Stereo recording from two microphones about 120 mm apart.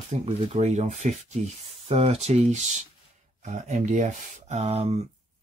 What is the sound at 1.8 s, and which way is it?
Speech, 60° right (ahead or behind).